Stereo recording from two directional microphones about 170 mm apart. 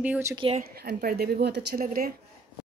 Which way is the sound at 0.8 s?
60° right (ahead or behind).